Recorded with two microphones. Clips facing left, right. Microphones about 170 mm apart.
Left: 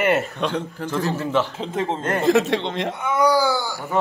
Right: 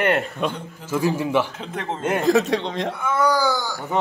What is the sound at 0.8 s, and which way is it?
A man's voice, 10° right (ahead or behind).